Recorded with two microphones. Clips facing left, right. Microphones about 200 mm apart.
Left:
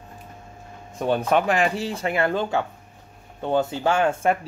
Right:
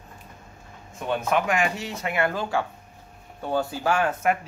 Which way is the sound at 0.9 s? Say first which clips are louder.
Left 4 dB; 35° left (ahead or behind).